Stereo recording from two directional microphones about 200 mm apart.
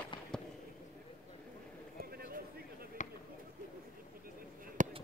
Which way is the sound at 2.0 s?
50° right (ahead or behind).